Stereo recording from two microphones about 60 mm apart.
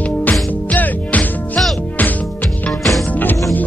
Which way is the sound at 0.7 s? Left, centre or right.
Left.